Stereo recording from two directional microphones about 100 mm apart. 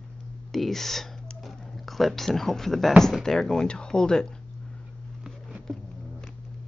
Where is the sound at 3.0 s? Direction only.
5° left (ahead or behind).